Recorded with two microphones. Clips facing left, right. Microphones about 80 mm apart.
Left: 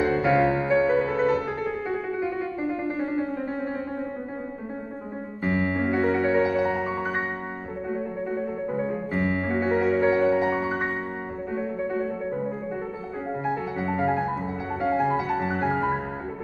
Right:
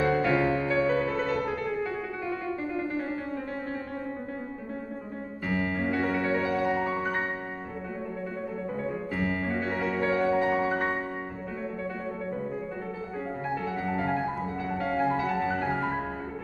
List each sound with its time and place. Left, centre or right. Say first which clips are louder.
0.0 s music: left 3 dB; centre
5.4 s music: left 4 dB; left
8.6 s music: left 4 dB; left
14.7 s music: left 4 dB; left